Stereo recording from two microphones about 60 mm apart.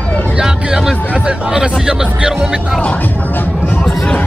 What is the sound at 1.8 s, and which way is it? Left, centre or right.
Music, centre.